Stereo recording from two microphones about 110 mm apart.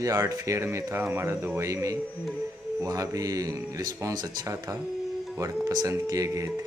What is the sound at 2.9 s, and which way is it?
Speech, 35° right (ahead or behind).